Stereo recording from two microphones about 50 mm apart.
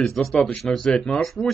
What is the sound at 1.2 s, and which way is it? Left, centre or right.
Speech, centre.